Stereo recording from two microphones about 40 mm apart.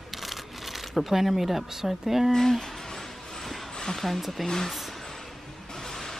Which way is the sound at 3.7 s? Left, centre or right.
Centre.